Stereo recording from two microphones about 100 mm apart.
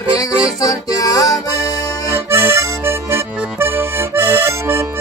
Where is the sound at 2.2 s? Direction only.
25° right (ahead or behind).